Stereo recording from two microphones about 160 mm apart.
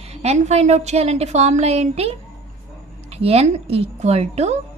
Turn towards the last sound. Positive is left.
turn(degrees=-40)  # may be behind; listen again after turning